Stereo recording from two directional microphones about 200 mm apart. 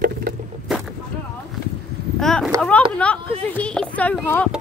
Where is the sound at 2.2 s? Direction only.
Centre (ahead or behind).